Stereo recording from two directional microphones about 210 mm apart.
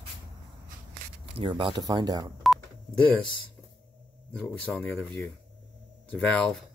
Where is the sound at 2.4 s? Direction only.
Centre (ahead or behind).